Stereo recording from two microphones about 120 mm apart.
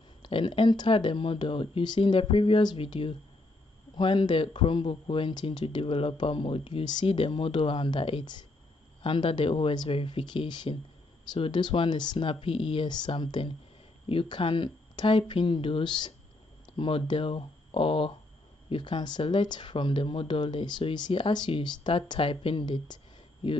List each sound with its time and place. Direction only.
0.2 s speech: 40° left (ahead or behind)